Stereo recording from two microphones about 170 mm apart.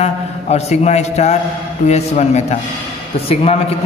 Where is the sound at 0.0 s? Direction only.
40° left (ahead or behind).